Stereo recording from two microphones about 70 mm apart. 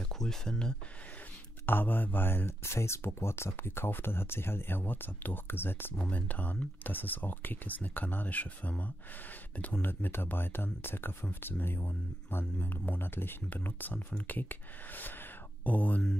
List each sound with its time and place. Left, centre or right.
0.1 s speech: centre
1.7 s speech: left